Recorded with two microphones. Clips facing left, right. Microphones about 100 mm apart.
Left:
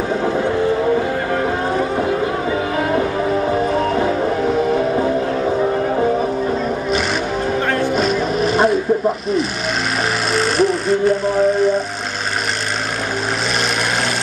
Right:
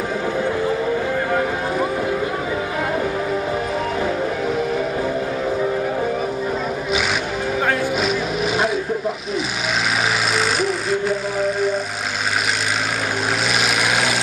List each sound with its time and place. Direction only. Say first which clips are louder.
0.2 s vehicle: left 4 dB; centre (ahead or behind)
2.5 s music: left 4 dB; centre (ahead or behind)
7.7 s vehicle: left 3 dB; 5° right (ahead or behind)
10.3 s vehicle: left 4 dB; centre (ahead or behind)